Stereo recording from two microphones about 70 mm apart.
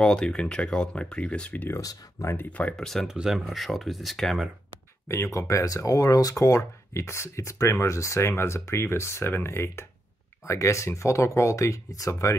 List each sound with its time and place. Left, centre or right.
0.0 s speech: centre
1.8 s speech: left
2.7 s speech: centre
3.1 s speech: centre
5.0 s speech: left